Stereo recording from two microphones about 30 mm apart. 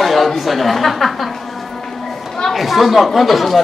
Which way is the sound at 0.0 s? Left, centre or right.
Centre.